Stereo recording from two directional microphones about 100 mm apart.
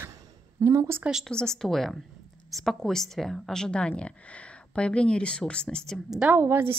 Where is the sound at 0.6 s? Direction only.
25° right (ahead or behind).